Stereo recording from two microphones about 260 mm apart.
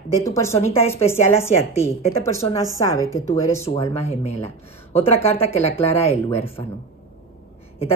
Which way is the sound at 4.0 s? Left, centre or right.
Left.